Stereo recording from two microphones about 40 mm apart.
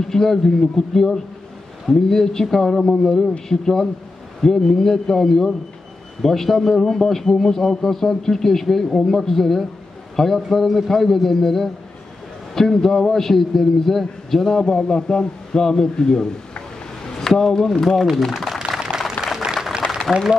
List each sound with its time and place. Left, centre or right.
0.0 s a man's voice: centre
14.6 s a man's voice: centre
18.8 s a sound: centre
19.0 s applause: centre